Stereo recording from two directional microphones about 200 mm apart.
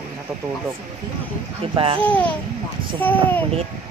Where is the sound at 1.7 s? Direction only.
25° right (ahead or behind).